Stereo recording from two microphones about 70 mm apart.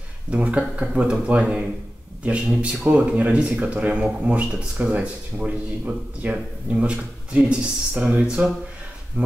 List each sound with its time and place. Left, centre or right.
0.3 s speech: centre